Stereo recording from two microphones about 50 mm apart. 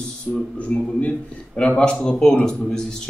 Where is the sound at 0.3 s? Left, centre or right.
Left.